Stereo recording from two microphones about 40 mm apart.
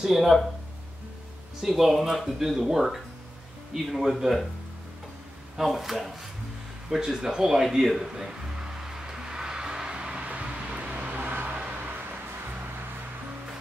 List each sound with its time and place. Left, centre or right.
0.0 s speech: centre
1.6 s speech: centre
5.6 s speech: centre
6.9 s music: centre; by 10.5 s right
10.8 s vehicle: right
11.1 s vehicle: right